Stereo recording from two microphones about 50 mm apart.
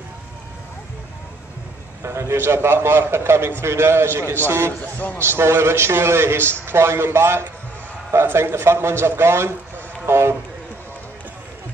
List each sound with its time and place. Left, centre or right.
2.0 s a man's voice: right
4.9 s a man's voice: left
5.2 s a man's voice: right
10.0 s a sound: right